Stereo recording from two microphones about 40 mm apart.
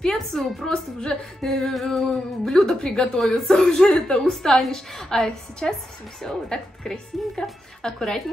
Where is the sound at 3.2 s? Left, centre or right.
Centre.